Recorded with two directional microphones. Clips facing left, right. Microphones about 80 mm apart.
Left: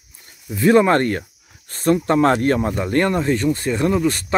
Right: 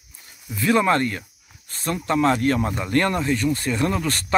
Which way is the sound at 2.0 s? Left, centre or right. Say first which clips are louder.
Right 1 dB; left.